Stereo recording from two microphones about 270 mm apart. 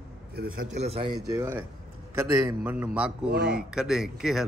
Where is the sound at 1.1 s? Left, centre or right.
Centre.